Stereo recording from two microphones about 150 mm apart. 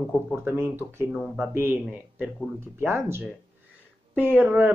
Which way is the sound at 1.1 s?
5° right (ahead or behind).